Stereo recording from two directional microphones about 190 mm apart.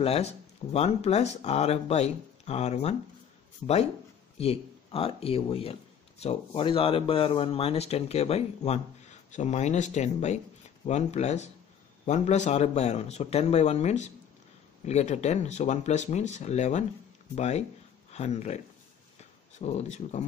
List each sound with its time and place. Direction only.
0.0 s speech: 30° left (ahead or behind)
4.4 s speech: 30° left (ahead or behind)
19.6 s speech: 35° left (ahead or behind)